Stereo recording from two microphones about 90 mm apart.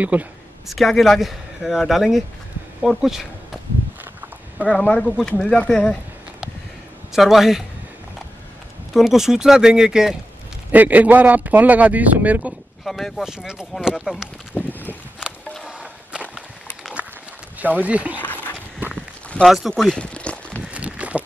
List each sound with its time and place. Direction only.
0.0 s speech: 15° right (ahead or behind)
0.7 s speech: centre (ahead or behind)
4.6 s speech: 15° left (ahead or behind)
7.1 s speech: 5° right (ahead or behind)
8.9 s speech: 5° right (ahead or behind)
10.7 s speech: 15° right (ahead or behind)
12.8 s speech: centre (ahead or behind)
14.5 s boat: 20° left (ahead or behind)
15.8 s a sound: 10° right (ahead or behind)
17.6 s speech: 20° right (ahead or behind)
18.2 s a sound: 20° left (ahead or behind)
19.4 s speech: 5° right (ahead or behind)
19.8 s a sound: 10° left (ahead or behind)
20.7 s a sound: 15° right (ahead or behind)